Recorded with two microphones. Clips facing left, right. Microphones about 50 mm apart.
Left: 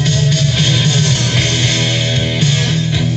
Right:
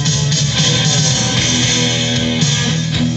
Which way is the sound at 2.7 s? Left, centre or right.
Centre.